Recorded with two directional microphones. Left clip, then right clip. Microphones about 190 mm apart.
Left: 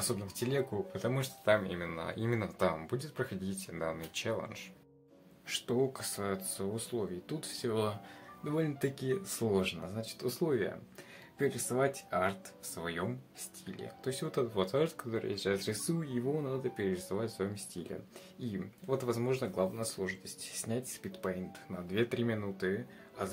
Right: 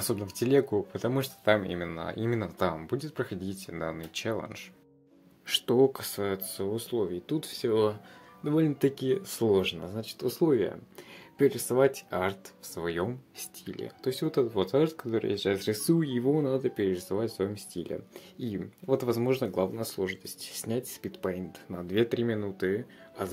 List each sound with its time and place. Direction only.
0.0 s speech: 30° right (ahead or behind)